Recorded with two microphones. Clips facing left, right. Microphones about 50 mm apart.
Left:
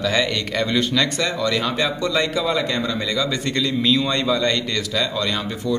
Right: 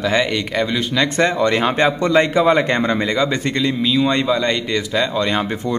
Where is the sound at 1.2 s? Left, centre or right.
Right.